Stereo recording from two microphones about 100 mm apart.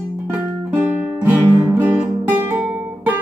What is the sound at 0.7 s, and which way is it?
Guitar, 20° right (ahead or behind).